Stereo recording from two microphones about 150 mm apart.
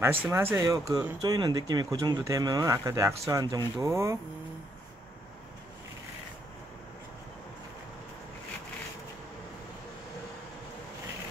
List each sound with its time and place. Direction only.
0.0 s speech: 15° right (ahead or behind)